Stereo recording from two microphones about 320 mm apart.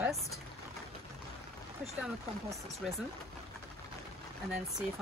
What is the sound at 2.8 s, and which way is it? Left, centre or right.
Speech, centre.